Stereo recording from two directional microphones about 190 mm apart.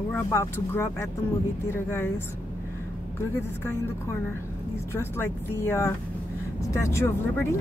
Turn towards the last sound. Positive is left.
turn(degrees=15)  # may be behind; listen again after turning